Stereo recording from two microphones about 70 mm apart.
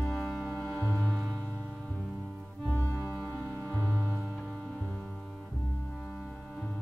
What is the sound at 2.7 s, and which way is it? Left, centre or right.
Music, left.